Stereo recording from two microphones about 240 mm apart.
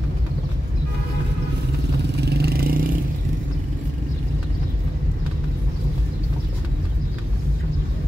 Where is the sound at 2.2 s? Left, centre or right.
Right.